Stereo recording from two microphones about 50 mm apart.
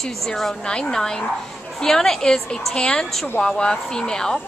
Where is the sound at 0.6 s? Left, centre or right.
Centre.